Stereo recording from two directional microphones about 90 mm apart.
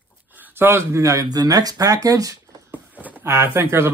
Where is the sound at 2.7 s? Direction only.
20° right (ahead or behind).